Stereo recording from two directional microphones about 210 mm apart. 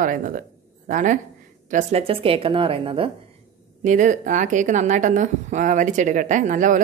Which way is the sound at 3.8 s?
35° right (ahead or behind).